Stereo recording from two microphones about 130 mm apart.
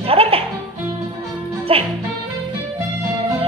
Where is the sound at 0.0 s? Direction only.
45° right (ahead or behind).